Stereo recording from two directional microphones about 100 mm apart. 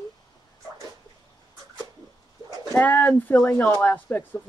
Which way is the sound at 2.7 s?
15° left (ahead or behind).